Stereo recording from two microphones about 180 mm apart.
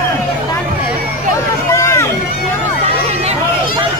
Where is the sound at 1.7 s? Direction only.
15° left (ahead or behind).